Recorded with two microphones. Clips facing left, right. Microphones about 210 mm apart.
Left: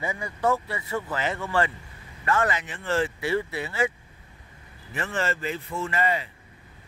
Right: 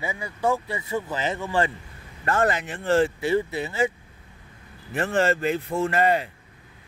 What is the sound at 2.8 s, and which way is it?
Speech, 35° right (ahead or behind).